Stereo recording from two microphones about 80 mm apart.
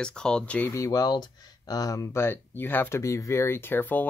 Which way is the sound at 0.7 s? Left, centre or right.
Left.